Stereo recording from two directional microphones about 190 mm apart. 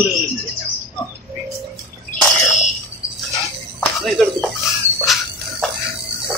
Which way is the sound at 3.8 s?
5° left (ahead or behind).